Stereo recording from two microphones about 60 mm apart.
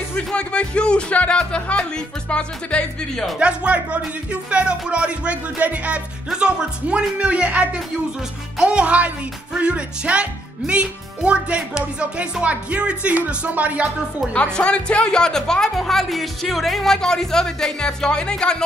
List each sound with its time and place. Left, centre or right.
0.3 s speech: centre
3.3 s speech: centre
14.3 s speech: centre